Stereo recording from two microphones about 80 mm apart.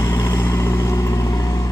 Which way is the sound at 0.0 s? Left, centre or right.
Left.